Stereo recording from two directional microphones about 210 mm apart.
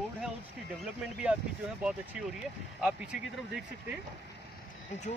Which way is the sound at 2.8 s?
5° right (ahead or behind).